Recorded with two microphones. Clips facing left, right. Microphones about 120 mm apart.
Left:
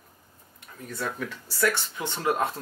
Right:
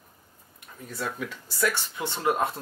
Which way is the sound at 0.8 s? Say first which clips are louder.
Left 1 dB; 10° right (ahead or behind).